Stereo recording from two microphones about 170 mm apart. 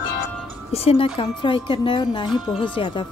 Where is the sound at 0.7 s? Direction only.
35° left (ahead or behind).